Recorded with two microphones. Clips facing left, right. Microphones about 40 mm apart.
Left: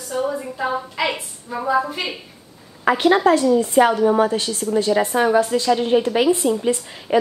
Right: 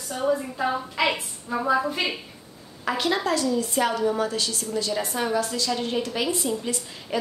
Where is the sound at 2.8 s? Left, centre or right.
Left.